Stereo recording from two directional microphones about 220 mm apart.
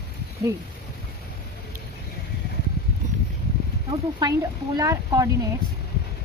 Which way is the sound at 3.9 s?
20° right (ahead or behind).